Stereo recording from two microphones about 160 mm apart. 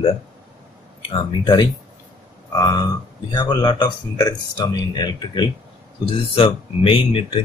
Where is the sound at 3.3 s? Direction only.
25° left (ahead or behind).